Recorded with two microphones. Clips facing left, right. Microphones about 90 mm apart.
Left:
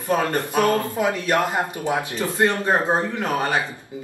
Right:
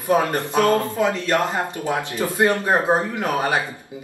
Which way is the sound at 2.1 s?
15° right (ahead or behind).